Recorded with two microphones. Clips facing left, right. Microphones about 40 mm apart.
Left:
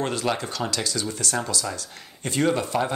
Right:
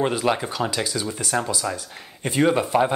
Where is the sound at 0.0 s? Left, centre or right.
Centre.